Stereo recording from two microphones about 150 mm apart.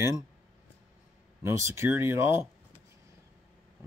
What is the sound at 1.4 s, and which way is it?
Speech, 20° right (ahead or behind).